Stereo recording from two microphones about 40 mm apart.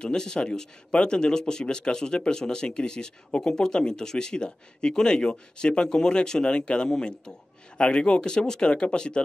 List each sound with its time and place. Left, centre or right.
0.0 s speech: centre